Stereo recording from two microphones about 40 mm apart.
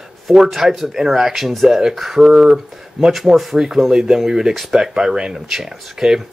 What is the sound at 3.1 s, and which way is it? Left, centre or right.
Speech, centre.